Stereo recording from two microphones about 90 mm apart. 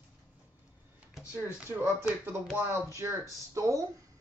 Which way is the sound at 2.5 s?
30° right (ahead or behind).